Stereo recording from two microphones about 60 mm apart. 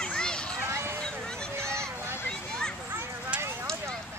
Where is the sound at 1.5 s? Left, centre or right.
Centre.